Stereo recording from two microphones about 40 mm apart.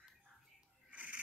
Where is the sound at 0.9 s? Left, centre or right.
Right.